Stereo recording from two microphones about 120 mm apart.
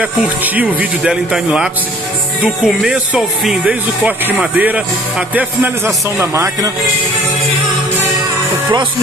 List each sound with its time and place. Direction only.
0.0 s speech: 15° right (ahead or behind)
6.1 s speech: 25° right (ahead or behind)